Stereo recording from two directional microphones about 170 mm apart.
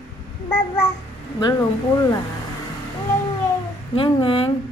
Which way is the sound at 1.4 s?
20° left (ahead or behind).